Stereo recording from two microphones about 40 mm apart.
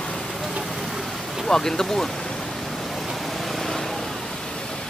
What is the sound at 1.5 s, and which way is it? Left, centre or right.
Speech, centre.